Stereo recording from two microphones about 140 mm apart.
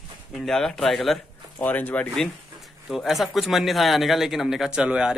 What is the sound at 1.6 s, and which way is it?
Speech, 10° left (ahead or behind).